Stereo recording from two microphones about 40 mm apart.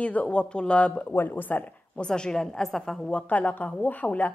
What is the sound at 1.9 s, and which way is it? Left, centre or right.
A woman's voice, left.